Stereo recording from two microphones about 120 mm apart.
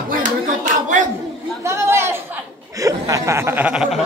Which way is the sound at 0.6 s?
90° right.